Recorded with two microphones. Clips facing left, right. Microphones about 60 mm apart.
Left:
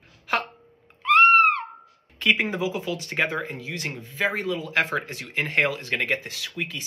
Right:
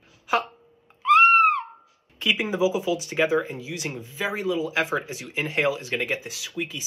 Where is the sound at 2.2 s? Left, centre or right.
Left.